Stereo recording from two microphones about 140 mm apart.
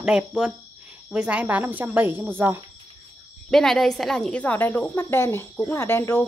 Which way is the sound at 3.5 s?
Centre (ahead or behind).